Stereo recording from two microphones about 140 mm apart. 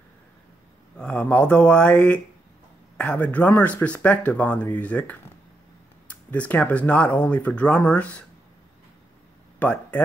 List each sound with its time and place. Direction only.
0.9 s speech: 10° left (ahead or behind)
9.6 s speech: 10° left (ahead or behind)